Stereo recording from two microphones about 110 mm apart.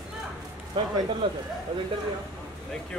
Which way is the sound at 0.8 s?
45° right (ahead or behind).